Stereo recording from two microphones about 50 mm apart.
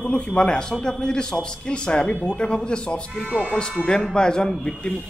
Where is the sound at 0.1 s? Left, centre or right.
Left.